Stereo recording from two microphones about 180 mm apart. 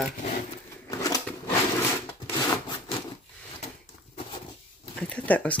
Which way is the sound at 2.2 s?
25° left (ahead or behind).